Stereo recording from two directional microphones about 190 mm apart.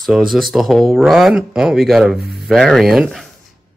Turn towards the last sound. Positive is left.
turn(degrees=0)  # may be behind; listen again after turning